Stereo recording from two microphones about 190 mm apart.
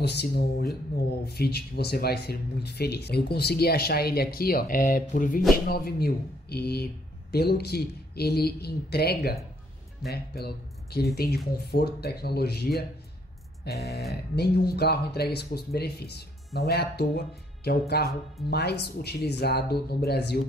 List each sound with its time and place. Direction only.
0.0 s speech: 60° left (ahead or behind)
14.3 s speech: 60° left (ahead or behind)